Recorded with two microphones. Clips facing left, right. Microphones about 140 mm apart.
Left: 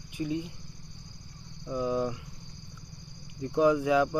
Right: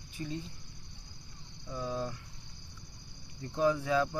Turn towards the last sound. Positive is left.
turn(degrees=15)  # may be behind; listen again after turning